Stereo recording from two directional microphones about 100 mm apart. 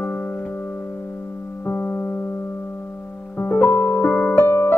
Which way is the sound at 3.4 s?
20° left (ahead or behind).